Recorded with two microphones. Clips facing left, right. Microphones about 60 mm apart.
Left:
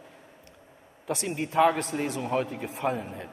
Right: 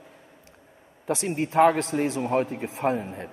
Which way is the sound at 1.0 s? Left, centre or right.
Right.